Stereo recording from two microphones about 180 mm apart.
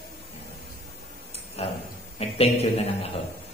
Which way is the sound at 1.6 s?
35° left (ahead or behind).